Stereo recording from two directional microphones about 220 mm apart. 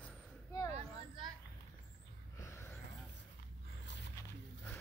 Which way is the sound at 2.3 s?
10° left (ahead or behind).